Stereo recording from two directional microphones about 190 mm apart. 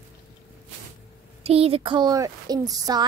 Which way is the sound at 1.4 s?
30° right (ahead or behind).